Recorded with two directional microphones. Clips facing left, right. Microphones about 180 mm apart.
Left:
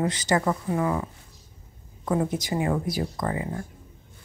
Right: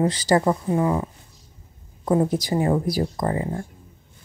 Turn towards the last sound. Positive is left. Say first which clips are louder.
# right 4 dB
turn(degrees=-35)  # may be behind; listen again after turning